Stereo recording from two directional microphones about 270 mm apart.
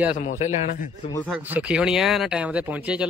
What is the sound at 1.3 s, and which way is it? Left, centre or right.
Speech, centre.